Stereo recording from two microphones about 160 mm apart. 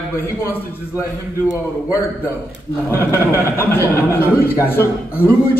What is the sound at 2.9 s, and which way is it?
Speech, 15° left (ahead or behind).